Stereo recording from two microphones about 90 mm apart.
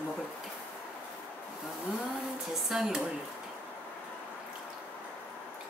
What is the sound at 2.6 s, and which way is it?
Speech, 5° right (ahead or behind).